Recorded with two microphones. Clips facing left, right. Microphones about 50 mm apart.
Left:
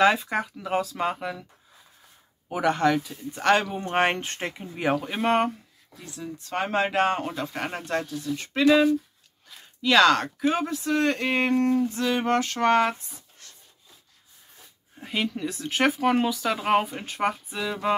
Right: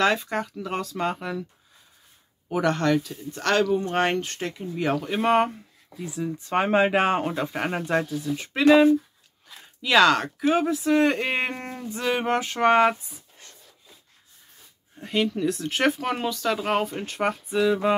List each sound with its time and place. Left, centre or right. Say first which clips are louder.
0.0 s speech: left 2 dB; centre
2.4 s speech: even; centre
4.9 s speech: right 3 dB; centre
5.9 s speech: right 7 dB; centre
8.6 s speech: right 3 dB; right
9.8 s speech: even; centre
15.0 s speech: right 4 dB; centre